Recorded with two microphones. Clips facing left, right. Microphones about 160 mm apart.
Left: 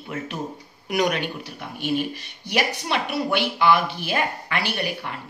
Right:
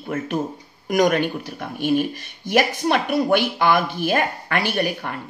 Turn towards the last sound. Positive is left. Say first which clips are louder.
# right 5 dB
turn(degrees=-50)  # may be behind; listen again after turning